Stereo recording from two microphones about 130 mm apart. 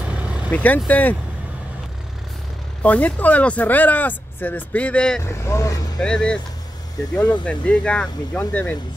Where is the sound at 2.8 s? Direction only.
10° left (ahead or behind).